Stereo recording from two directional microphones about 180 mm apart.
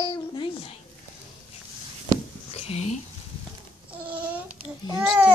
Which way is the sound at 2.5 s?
35° left (ahead or behind).